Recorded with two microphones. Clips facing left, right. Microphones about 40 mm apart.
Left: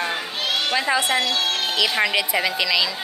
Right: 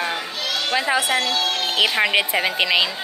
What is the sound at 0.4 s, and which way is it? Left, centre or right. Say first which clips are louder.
Children playing: left 4 dB; left.